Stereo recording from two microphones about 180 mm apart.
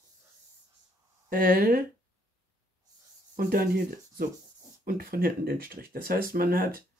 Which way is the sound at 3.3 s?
50° right (ahead or behind).